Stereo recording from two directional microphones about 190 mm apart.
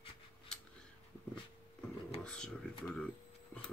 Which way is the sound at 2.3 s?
5° left (ahead or behind).